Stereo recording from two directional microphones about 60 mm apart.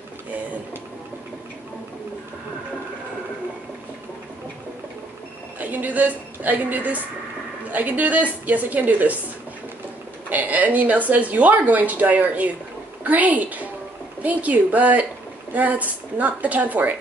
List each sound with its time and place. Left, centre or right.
5.6 s a woman's voice: right
10.3 s speech: right